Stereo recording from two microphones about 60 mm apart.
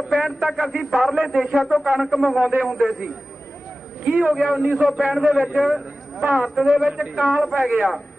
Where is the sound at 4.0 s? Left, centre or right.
Right.